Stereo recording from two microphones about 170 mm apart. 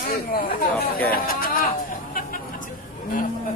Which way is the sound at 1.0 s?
60° left (ahead or behind).